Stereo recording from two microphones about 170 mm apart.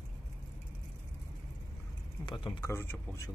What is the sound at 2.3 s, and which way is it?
Speech, 25° left (ahead or behind).